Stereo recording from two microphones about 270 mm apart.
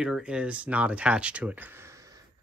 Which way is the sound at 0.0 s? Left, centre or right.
Centre.